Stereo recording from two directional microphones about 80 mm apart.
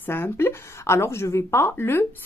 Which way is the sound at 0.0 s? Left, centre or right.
Left.